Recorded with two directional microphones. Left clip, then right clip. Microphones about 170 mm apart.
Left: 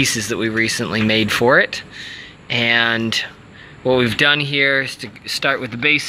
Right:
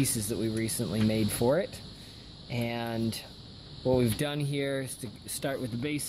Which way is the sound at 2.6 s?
Centre (ahead or behind).